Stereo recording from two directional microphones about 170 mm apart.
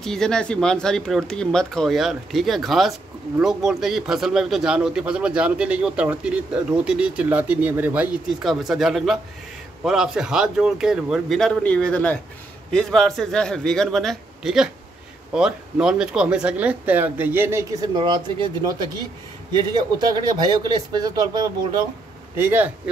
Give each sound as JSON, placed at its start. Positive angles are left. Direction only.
{"t": 0.0, "sound": "speech", "side_deg": 5}
{"t": 22.4, "sound": "speech", "side_deg": -10}